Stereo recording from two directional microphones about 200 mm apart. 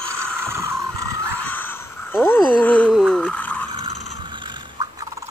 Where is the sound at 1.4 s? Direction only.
10° left (ahead or behind).